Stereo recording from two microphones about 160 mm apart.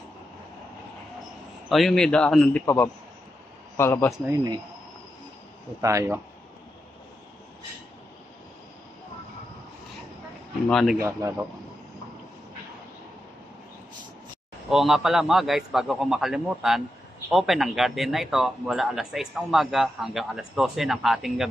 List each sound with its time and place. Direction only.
1.7 s a man's voice: centre (ahead or behind)
2.6 s a man's voice: 15° left (ahead or behind)
5.8 s speech: 20° right (ahead or behind)
10.7 s a man's voice: centre (ahead or behind)
11.0 s a man's voice: 15° right (ahead or behind)
14.7 s a man's voice: centre (ahead or behind)